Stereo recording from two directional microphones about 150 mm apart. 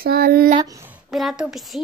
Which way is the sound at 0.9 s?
Centre (ahead or behind).